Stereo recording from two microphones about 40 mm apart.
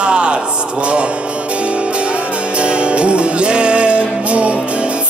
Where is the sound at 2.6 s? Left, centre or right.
Right.